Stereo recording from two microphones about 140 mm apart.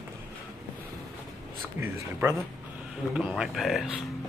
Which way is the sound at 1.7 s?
15° right (ahead or behind).